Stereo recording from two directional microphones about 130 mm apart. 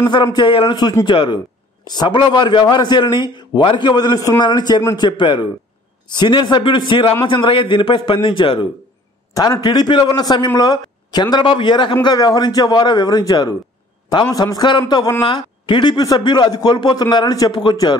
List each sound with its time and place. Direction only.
0.0 s speech: 35° left (ahead or behind)
9.3 s speech: 30° left (ahead or behind)